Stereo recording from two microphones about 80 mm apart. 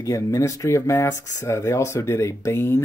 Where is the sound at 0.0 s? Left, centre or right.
Left.